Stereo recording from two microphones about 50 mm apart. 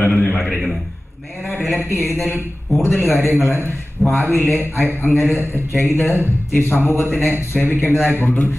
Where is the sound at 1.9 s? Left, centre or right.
Left.